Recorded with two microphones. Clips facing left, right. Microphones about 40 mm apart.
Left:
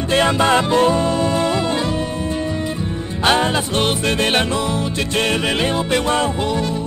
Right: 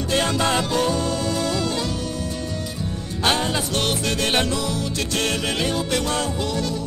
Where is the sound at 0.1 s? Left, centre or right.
Left.